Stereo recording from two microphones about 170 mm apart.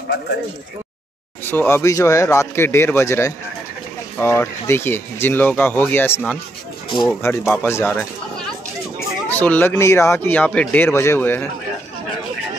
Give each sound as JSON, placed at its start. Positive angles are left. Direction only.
{"t": 1.5, "sound": "speech", "side_deg": 15}
{"t": 9.3, "sound": "speech", "side_deg": 10}